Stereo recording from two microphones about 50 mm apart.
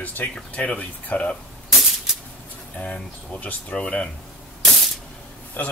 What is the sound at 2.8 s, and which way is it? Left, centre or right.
Speech, left.